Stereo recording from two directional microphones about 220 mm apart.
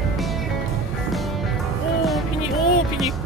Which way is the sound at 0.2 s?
Centre (ahead or behind).